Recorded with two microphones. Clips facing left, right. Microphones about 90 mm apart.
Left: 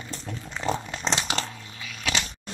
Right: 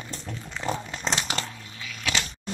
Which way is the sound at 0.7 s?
25° left (ahead or behind).